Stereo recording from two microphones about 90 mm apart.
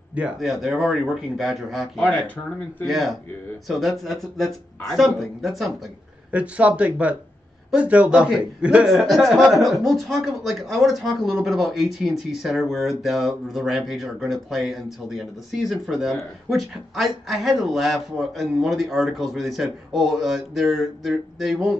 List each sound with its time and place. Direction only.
0.4 s speech: centre (ahead or behind)
2.0 s speech: 15° left (ahead or behind)
2.9 s speech: centre (ahead or behind)
6.3 s speech: 15° right (ahead or behind)